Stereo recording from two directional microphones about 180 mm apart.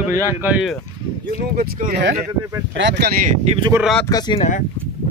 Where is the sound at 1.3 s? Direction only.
55° right (ahead or behind).